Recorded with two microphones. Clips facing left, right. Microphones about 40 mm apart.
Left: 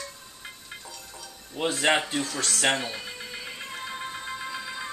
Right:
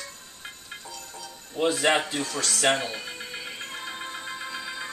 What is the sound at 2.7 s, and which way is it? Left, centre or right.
Music, centre.